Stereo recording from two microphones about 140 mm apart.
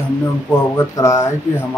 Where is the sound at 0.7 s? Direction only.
20° left (ahead or behind).